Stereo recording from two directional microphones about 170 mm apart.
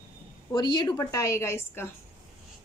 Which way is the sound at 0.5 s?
25° left (ahead or behind).